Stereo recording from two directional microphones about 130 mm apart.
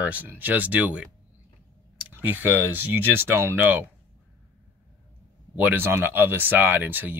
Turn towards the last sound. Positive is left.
turn(degrees=-15)  # may be behind; listen again after turning